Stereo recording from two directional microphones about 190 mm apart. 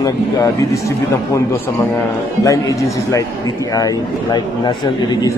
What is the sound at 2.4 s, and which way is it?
A man's voice, 15° left (ahead or behind).